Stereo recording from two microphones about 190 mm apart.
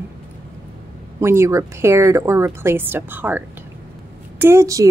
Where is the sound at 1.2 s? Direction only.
15° right (ahead or behind).